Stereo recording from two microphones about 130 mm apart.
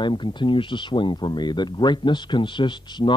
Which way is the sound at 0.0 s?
35° left (ahead or behind).